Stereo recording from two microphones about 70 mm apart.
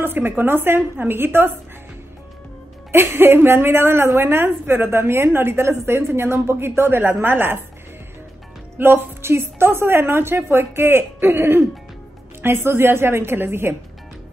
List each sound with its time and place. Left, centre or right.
0.0 s a woman's voice: right
2.9 s a woman's voice: right
8.7 s a woman's voice: right